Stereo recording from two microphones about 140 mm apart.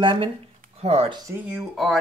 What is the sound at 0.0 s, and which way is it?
Speech, 35° right (ahead or behind).